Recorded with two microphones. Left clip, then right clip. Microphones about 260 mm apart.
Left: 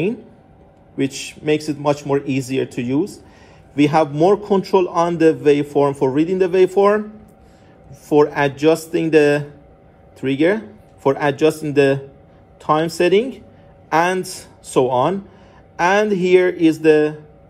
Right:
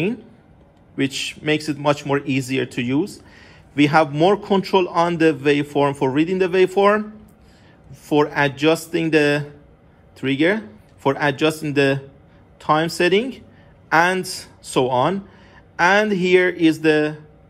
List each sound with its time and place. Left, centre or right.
0.9 s a man's voice: centre
8.1 s music: centre
10.2 s a man's voice: centre